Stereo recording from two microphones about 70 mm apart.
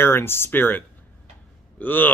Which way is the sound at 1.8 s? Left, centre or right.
Left.